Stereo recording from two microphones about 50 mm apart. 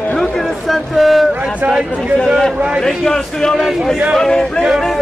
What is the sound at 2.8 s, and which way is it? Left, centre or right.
Speech, centre.